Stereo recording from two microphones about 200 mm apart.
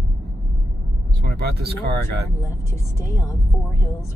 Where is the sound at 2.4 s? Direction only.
15° left (ahead or behind).